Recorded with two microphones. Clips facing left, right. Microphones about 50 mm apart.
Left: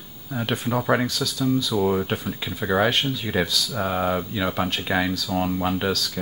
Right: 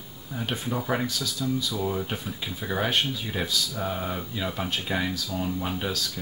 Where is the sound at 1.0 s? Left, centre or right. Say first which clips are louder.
Left 5 dB; left.